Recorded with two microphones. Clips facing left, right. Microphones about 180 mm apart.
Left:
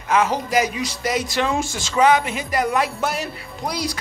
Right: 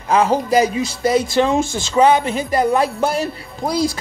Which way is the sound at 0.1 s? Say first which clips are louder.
Right 4 dB; 30° right (ahead or behind).